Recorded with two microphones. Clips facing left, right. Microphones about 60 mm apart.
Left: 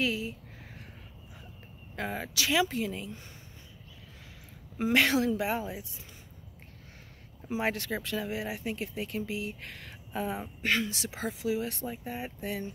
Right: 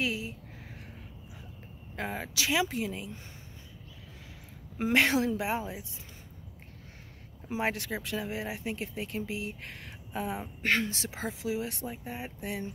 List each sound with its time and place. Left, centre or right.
0.0 s speech: centre
2.0 s speech: centre
4.7 s speech: right
7.4 s speech: right
10.6 s speech: right; by 12.6 s centre